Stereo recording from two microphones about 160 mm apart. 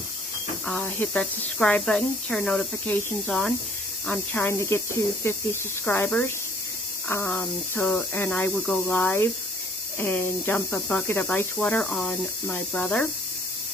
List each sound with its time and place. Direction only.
0.7 s speech: 5° left (ahead or behind)